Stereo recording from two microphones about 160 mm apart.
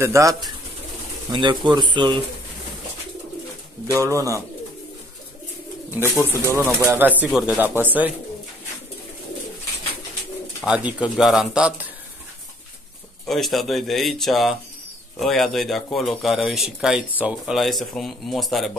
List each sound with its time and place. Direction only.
0.0 s speech: 20° right (ahead or behind)
1.3 s speech: 30° right (ahead or behind)
3.8 s speech: 20° right (ahead or behind)
6.0 s speech: 15° left (ahead or behind)
6.3 s a man's voice: 15° right (ahead or behind)
10.6 s a man's voice: 10° right (ahead or behind)
13.3 s speech: centre (ahead or behind)